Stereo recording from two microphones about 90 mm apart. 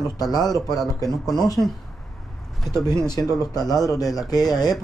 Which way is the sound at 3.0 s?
45° left (ahead or behind).